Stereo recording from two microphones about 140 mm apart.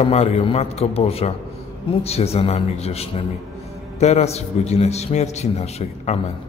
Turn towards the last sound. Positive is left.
turn(degrees=50)  # may be behind; listen again after turning